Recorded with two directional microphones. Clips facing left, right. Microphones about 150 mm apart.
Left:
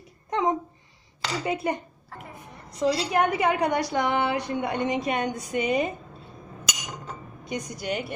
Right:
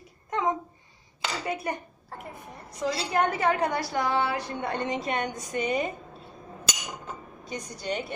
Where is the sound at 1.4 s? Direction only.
25° left (ahead or behind).